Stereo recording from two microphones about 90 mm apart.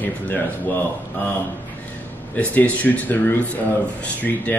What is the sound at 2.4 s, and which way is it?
A man's voice, 15° left (ahead or behind).